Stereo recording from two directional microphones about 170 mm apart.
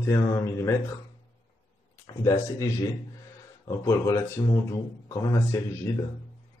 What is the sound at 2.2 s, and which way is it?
A man's voice, 20° left (ahead or behind).